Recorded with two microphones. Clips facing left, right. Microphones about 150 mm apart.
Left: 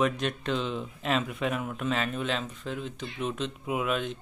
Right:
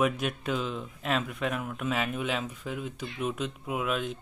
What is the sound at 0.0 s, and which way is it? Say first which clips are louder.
Speech: even; 5° right (ahead or behind).